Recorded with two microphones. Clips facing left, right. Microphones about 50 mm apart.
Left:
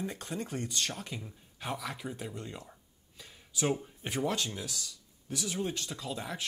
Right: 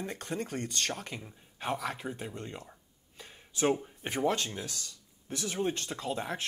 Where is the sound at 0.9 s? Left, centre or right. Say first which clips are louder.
Right 1 dB; right.